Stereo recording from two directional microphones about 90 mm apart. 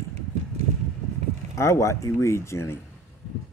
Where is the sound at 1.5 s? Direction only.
35° left (ahead or behind).